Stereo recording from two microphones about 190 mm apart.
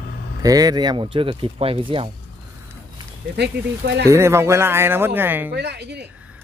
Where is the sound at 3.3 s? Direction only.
60° right (ahead or behind).